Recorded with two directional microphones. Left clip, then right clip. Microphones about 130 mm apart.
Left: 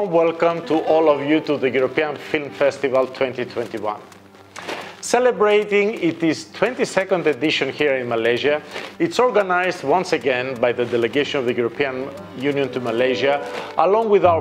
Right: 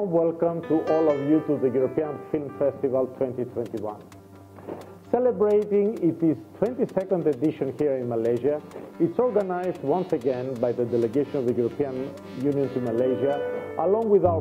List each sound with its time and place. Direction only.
0.1 s a man's voice: 40° right (ahead or behind)
4.6 s a man's voice: 35° right (ahead or behind)
10.2 s a man's voice: 35° right (ahead or behind)
12.4 s a man's voice: 40° right (ahead or behind)